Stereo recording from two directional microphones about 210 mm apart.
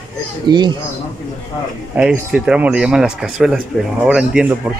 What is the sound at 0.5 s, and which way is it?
Speech, 20° right (ahead or behind).